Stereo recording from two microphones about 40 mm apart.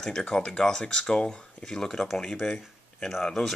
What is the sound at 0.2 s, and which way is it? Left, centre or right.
Speech, left.